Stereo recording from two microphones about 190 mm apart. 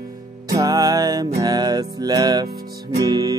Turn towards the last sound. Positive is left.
turn(degrees=-20)  # may be behind; listen again after turning